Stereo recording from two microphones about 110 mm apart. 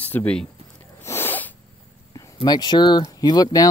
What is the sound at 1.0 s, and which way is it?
Sneeze, 20° left (ahead or behind).